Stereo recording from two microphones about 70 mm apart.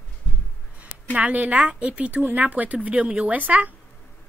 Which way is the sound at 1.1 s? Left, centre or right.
Right.